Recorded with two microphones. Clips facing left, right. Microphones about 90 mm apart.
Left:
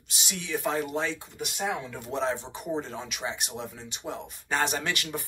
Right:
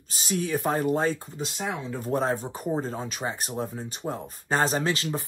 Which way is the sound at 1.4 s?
65° left (ahead or behind).